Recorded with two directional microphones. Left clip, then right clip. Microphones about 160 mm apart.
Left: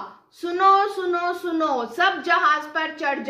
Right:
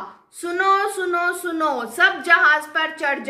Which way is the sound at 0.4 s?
30° left (ahead or behind).